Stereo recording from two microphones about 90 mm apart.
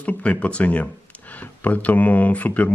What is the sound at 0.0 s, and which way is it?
Speech, 15° left (ahead or behind).